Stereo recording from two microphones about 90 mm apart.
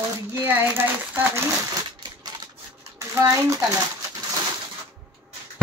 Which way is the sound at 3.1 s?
35° right (ahead or behind).